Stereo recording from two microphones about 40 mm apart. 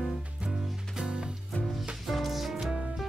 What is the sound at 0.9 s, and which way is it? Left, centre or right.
Music, centre.